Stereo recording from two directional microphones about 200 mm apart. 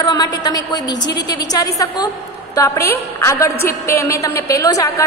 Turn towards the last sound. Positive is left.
turn(degrees=15)  # may be behind; listen again after turning